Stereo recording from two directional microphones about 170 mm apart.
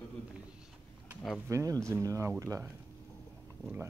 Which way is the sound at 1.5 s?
20° right (ahead or behind).